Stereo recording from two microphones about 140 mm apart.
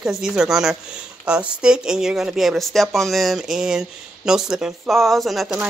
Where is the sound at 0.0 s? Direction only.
5° right (ahead or behind).